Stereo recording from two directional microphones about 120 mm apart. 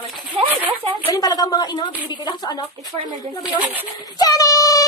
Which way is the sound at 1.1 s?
30° left (ahead or behind).